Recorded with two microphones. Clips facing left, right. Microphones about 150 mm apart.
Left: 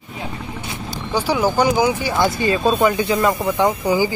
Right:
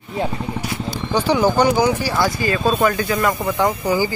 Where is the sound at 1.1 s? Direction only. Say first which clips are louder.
Right 2 dB; 10° left (ahead or behind).